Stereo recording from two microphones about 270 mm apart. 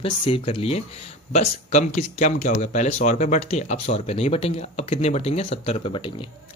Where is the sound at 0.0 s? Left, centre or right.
Left.